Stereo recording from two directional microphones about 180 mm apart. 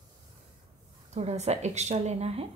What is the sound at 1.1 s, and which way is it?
Speech, 35° right (ahead or behind).